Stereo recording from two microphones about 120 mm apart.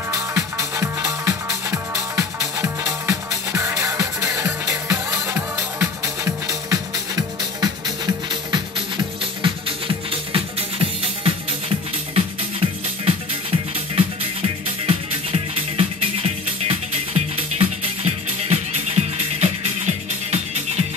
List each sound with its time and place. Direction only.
0.1 s music: 25° right (ahead or behind); by 20.8 s 65° right (ahead or behind)